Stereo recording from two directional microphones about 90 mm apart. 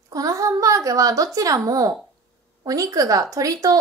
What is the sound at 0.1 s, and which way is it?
A woman's voice, 40° right (ahead or behind).